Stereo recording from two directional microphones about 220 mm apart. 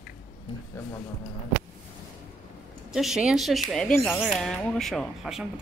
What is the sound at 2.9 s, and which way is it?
Speech, centre (ahead or behind).